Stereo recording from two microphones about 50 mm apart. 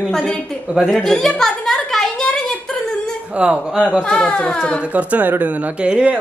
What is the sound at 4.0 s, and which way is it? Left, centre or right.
Speech, centre.